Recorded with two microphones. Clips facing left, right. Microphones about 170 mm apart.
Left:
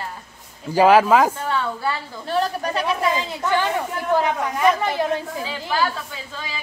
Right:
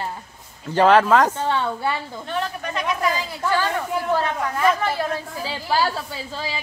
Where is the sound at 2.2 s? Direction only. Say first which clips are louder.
Left 7 dB; 35° left (ahead or behind).